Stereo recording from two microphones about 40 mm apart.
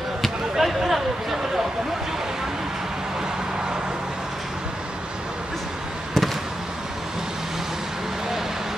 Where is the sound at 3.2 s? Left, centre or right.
Centre.